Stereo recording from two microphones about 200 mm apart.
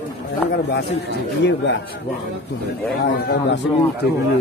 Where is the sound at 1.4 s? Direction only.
60° left (ahead or behind).